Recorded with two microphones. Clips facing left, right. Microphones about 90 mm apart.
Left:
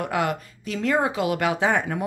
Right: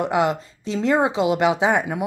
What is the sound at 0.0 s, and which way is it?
A woman's voice, 20° right (ahead or behind).